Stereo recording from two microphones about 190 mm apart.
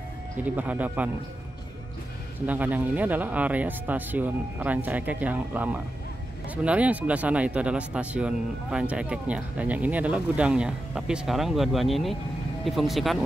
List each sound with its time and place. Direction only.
0.4 s speech: 10° right (ahead or behind)
2.4 s speech: 10° right (ahead or behind)